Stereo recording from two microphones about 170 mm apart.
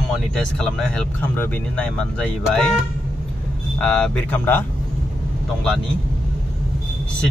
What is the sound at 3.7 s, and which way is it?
Speech, 5° left (ahead or behind).